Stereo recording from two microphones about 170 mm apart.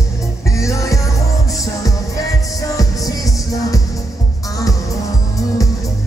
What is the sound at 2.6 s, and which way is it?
Music, 20° left (ahead or behind).